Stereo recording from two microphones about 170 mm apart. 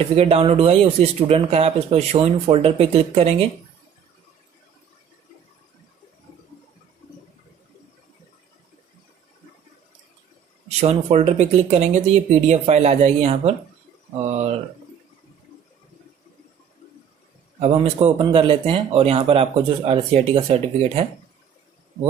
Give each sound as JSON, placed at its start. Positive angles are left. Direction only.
{"t": 0.0, "sound": "speech", "side_deg": -35}
{"t": 10.8, "sound": "speech", "side_deg": -35}
{"t": 17.6, "sound": "speech", "side_deg": -35}